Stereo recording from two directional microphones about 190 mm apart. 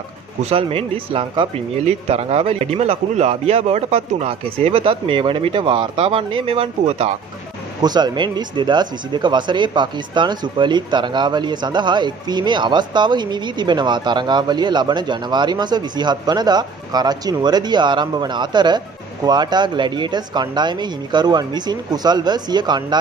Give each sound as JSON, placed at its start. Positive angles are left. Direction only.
{"t": 0.4, "sound": "speech", "side_deg": -30}
{"t": 7.8, "sound": "speech", "side_deg": -20}